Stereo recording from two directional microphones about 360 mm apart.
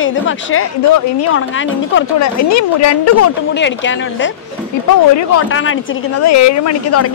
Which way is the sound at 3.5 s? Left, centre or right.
Left.